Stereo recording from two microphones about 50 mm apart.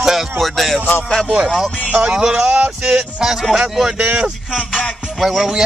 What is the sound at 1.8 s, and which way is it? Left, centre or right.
Speech, right.